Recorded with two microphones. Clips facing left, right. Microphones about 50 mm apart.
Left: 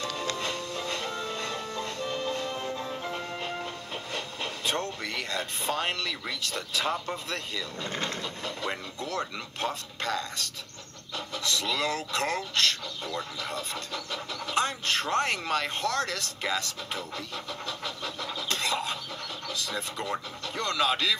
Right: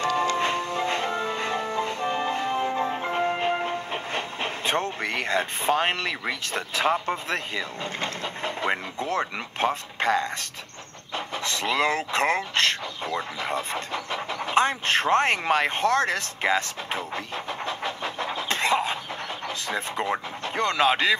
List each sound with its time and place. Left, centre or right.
0.4 s music: right
11.1 s speech: right